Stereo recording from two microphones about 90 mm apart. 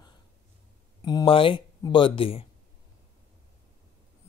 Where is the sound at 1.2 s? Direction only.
80° left.